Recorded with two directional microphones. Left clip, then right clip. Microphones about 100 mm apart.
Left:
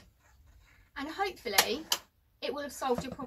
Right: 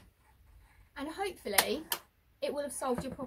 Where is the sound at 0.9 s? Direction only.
10° right (ahead or behind).